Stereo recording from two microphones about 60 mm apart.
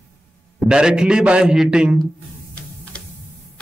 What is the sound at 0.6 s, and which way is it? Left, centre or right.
A man's voice, centre.